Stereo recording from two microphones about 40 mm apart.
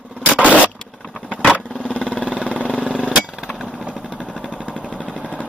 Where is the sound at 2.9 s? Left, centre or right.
Left.